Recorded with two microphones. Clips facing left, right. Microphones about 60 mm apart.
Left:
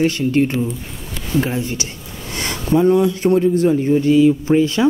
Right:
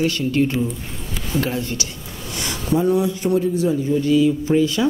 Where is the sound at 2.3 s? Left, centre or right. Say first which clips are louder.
Left 4 dB; left.